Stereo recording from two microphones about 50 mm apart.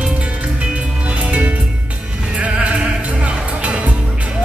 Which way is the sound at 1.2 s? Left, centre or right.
Right.